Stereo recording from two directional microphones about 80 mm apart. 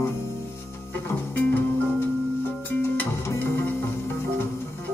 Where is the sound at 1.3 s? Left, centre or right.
Left.